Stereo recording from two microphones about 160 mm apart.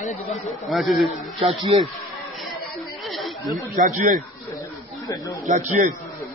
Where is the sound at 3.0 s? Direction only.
Centre (ahead or behind).